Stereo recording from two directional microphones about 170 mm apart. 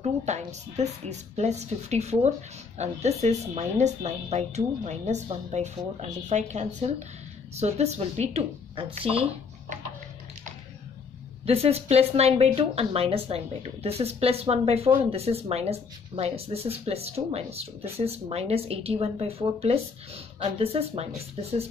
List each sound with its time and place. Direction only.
0.0 s speech: 40° right (ahead or behind)
11.4 s speech: 35° right (ahead or behind)